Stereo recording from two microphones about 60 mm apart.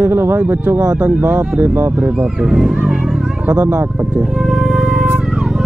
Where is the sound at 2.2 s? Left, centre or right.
Centre.